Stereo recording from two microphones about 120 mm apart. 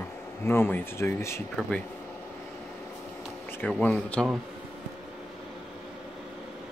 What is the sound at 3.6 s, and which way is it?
Speech, 10° left (ahead or behind).